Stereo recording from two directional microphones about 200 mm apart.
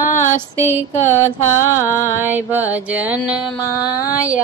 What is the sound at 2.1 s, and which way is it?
Mantra, 10° right (ahead or behind).